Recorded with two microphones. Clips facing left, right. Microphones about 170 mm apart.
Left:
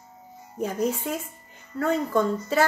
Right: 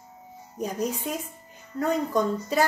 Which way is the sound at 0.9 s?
15° right (ahead or behind).